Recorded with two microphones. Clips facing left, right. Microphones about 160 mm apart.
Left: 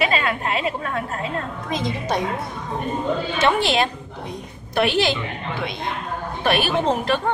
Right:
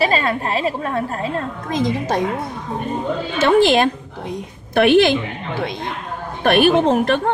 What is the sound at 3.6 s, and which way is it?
A woman's voice, 50° right (ahead or behind).